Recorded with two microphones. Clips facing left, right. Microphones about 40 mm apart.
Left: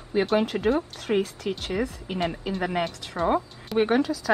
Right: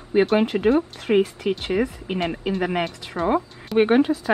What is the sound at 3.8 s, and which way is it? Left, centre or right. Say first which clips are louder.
Speech: right 5 dB; right.